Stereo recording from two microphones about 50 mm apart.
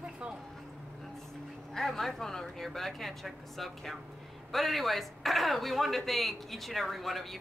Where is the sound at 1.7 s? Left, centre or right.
Centre.